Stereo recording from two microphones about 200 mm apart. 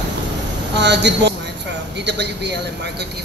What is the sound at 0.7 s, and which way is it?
A woman's voice, 60° right (ahead or behind).